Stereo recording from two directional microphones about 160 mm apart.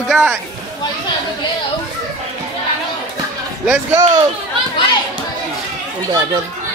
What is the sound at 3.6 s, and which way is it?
Speech, 20° right (ahead or behind).